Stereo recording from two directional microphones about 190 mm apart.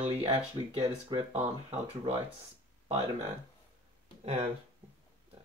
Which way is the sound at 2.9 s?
35° right (ahead or behind).